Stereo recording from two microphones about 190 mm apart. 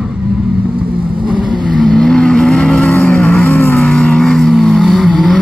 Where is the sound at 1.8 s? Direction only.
Centre (ahead or behind).